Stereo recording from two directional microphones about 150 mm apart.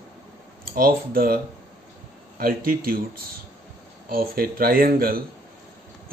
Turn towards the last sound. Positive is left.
turn(degrees=-80)